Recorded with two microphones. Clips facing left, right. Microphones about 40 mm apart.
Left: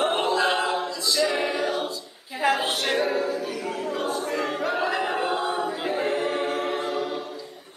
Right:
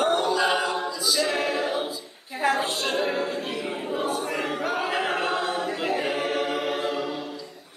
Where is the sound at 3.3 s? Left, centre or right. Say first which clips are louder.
Left 1 dB; right.